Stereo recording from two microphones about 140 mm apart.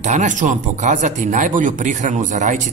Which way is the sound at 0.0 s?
60° right (ahead or behind).